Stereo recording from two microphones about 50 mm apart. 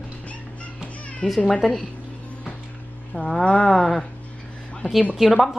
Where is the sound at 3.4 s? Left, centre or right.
Left.